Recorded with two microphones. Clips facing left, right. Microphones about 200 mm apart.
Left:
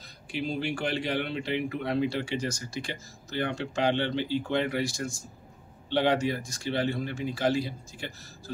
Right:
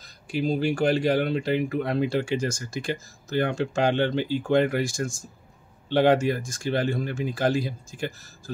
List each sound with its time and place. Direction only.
0.3 s speech: 40° right (ahead or behind)